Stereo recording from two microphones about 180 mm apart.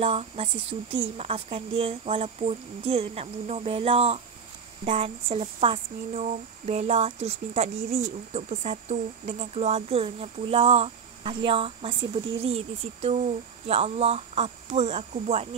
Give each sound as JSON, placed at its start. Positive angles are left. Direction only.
{"t": 0.0, "sound": "speech", "side_deg": -35}